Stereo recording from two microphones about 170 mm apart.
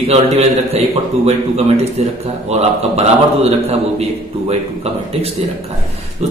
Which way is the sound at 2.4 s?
40° right (ahead or behind).